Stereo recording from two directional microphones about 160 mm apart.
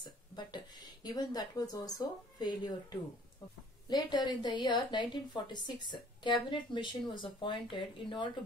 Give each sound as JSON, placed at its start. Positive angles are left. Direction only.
{"t": 0.0, "sound": "a woman's voice", "side_deg": 25}